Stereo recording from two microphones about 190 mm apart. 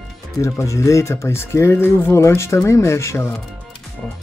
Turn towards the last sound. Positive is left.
turn(degrees=15)  # may be behind; listen again after turning